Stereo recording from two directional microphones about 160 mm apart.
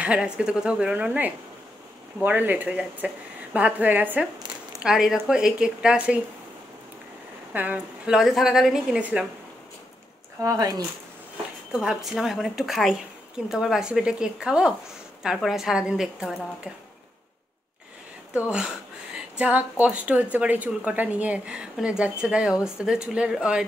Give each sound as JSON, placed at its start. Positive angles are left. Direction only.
{"t": 0.0, "sound": "a woman's voice", "side_deg": -5}
{"t": 7.5, "sound": "a woman's voice", "side_deg": -10}
{"t": 10.4, "sound": "speech", "side_deg": -20}
{"t": 11.7, "sound": "a woman's voice", "side_deg": -5}
{"t": 19.3, "sound": "speech", "side_deg": -10}